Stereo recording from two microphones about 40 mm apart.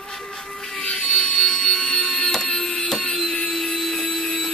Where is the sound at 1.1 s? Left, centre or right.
Left.